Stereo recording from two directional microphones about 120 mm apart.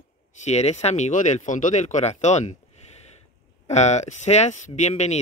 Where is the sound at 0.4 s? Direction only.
65° left (ahead or behind).